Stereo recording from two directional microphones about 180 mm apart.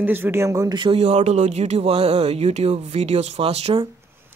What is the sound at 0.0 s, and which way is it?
Speech, 10° right (ahead or behind).